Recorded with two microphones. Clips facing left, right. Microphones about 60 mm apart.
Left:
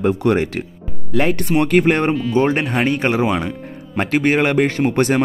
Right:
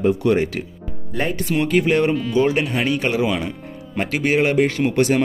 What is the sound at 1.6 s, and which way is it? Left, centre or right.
Speech, left.